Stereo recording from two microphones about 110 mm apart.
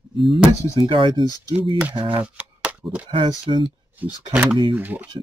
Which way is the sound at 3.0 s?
50° right (ahead or behind).